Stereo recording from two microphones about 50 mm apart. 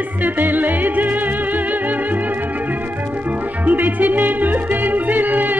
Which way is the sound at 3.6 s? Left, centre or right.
Right.